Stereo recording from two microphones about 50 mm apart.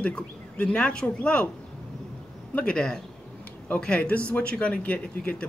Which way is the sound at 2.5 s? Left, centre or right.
Left.